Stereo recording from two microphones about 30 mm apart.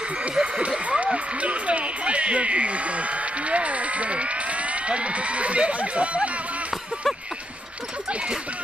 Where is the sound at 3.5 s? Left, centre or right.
Right.